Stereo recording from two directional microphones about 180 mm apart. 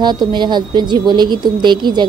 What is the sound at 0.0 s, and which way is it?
A woman's voice, 25° right (ahead or behind).